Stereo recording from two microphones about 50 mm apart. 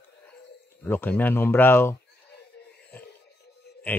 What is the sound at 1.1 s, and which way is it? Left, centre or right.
Speech, left.